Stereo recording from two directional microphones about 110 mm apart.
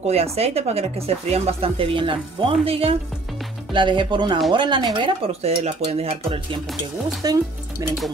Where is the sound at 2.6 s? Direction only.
60° right (ahead or behind).